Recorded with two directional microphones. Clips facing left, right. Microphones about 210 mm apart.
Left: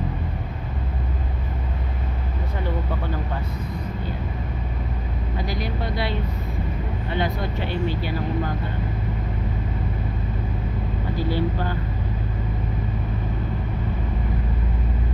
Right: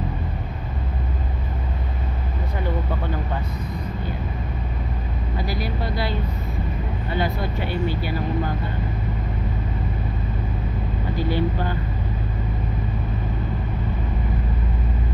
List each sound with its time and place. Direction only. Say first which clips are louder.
5.4 s speech: right 1 dB; 5° right (ahead or behind)
11.1 s speech: right 1 dB; 20° right (ahead or behind)